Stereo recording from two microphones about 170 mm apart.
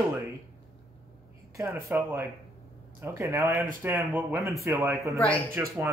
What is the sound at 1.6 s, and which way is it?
Speech, 15° right (ahead or behind).